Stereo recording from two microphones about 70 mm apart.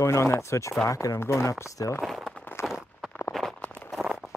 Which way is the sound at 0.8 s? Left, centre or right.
Left.